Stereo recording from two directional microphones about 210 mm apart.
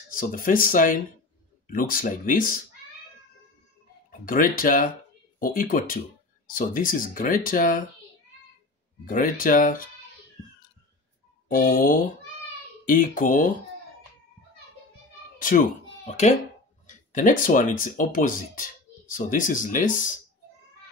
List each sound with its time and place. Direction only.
0.2 s speech: 40° left (ahead or behind)
4.1 s speech: 40° left (ahead or behind)
9.0 s speech: 40° left (ahead or behind)
11.4 s speech: 40° left (ahead or behind)
15.3 s meow: 40° left (ahead or behind)
16.1 s speech: 35° left (ahead or behind)